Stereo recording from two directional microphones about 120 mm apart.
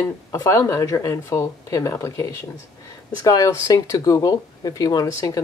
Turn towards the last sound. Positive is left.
turn(degrees=25)  # may be behind; listen again after turning